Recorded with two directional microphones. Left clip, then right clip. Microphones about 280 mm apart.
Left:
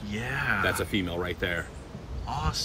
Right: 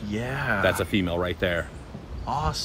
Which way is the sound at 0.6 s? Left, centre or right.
Right.